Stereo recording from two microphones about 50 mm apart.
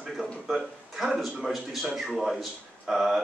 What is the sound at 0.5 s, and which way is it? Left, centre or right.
Speech, centre.